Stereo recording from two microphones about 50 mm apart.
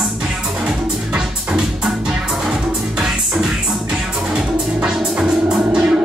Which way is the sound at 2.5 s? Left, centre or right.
Centre.